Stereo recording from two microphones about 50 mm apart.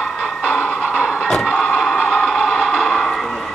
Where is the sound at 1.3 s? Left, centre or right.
Centre.